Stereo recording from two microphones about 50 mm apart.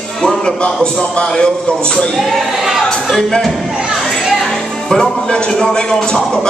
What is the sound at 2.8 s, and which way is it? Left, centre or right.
Speech, centre.